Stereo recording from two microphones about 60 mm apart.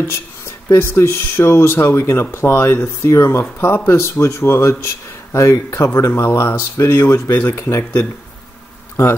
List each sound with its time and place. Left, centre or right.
0.7 s speech: left
3.5 s speech: left
7.3 s speech: left